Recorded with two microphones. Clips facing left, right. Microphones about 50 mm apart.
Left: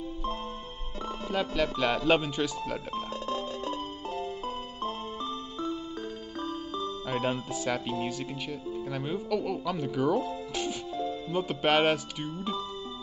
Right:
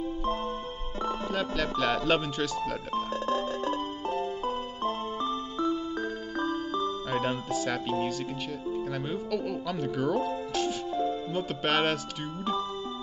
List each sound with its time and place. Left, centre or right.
1.3 s speech: centre
2.9 s music: right
7.1 s speech: centre
8.9 s speech: centre
10.5 s music: centre
11.3 s speech: centre